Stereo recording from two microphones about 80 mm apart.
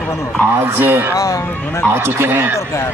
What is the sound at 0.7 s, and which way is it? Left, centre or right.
Speech, right.